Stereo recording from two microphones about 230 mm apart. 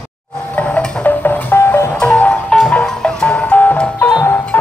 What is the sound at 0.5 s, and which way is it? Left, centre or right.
Music, centre.